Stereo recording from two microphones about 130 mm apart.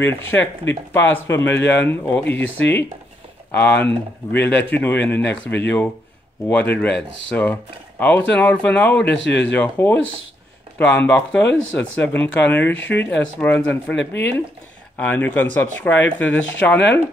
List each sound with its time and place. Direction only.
0.0 s speech: 15° left (ahead or behind)
15.0 s speech: 15° left (ahead or behind)